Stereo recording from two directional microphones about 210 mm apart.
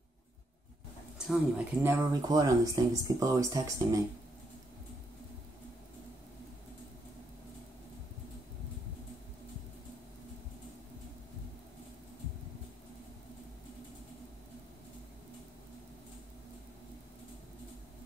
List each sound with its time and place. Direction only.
1.1 s speech: 5° right (ahead or behind)